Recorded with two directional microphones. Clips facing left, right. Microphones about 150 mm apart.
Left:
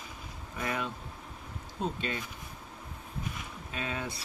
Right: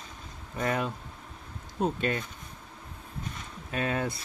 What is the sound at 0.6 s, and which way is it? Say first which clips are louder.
Speech: right 5 dB; 45° right (ahead or behind).